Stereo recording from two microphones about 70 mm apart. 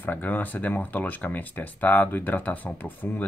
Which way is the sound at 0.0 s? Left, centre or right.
Left.